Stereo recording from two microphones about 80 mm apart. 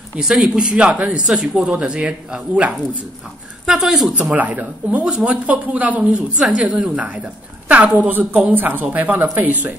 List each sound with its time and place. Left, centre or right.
0.2 s speech: centre
4.1 s a woman's voice: centre